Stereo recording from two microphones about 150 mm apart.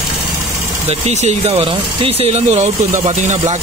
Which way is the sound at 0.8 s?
45° right (ahead or behind).